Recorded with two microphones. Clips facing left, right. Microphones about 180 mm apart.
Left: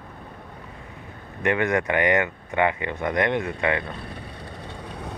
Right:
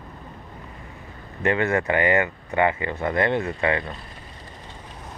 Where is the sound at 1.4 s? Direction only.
15° left (ahead or behind).